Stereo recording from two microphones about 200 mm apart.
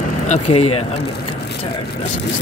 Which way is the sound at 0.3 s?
30° left (ahead or behind).